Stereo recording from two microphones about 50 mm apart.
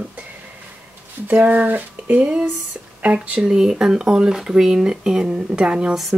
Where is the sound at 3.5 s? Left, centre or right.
Centre.